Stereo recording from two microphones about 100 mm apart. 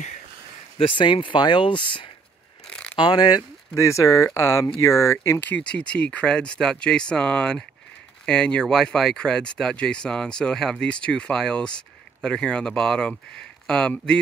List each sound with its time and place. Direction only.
0.7 s speech: 55° left (ahead or behind)
3.7 s speech: 30° left (ahead or behind)
5.4 s speech: 15° left (ahead or behind)